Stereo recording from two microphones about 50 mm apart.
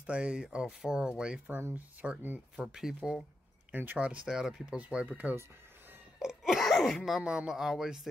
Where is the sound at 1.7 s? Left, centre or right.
Right.